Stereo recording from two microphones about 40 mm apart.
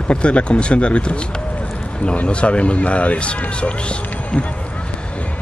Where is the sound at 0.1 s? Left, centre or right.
Left.